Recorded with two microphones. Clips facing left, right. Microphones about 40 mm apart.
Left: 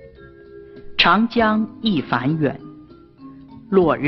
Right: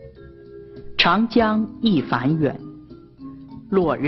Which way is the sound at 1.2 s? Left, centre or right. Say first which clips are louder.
Left 1 dB; centre.